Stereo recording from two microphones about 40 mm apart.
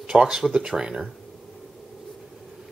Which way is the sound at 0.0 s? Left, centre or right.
Right.